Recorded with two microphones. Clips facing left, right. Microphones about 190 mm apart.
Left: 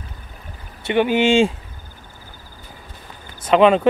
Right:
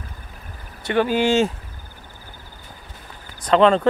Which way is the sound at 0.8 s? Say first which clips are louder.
Left 2 dB; 20° left (ahead or behind).